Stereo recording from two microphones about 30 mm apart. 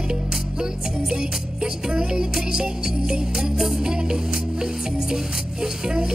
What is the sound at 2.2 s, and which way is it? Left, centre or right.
Music, right.